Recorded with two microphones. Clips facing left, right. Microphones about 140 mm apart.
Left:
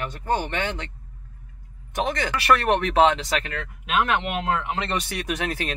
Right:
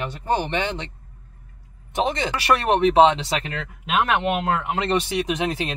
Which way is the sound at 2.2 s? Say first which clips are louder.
Even; 20° right (ahead or behind).